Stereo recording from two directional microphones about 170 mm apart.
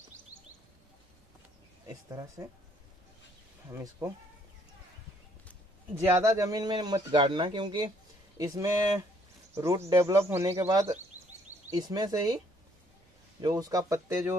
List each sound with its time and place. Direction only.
3.7 s speech: 20° right (ahead or behind)
6.0 s speech: 20° right (ahead or behind)
13.4 s speech: 25° right (ahead or behind)